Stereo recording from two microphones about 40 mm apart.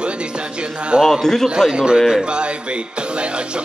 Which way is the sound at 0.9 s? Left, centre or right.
Right.